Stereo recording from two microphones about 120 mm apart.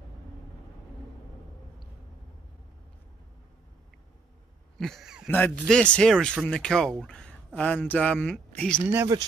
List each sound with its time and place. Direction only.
4.7 s speech: centre (ahead or behind)
5.3 s speech: 10° left (ahead or behind)
8.8 s speech: 15° right (ahead or behind)